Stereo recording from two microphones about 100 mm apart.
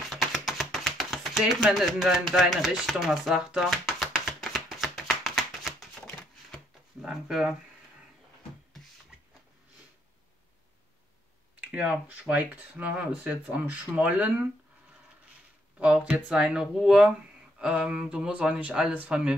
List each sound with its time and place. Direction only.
0.1 s a sound: centre (ahead or behind)
2.3 s chopping: centre (ahead or behind)
7.0 s speech: 5° right (ahead or behind)
11.6 s speech: 15° right (ahead or behind)
15.8 s speech: 10° right (ahead or behind)